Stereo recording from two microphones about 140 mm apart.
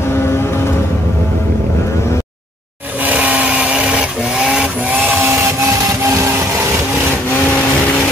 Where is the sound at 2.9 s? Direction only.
10° right (ahead or behind).